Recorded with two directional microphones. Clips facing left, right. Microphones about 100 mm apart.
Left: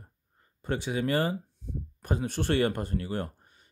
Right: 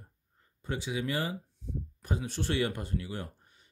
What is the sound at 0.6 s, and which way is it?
Speech, 55° left (ahead or behind).